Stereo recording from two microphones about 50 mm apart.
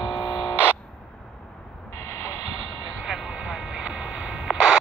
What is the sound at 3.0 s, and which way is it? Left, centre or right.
Vehicle, centre.